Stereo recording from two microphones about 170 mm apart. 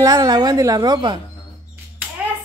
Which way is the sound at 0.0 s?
20° right (ahead or behind).